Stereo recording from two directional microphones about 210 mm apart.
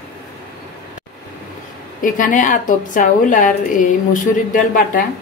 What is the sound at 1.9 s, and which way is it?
A woman's voice, 40° left (ahead or behind).